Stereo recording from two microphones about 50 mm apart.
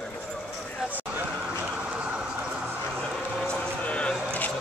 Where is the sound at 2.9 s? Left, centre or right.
Centre.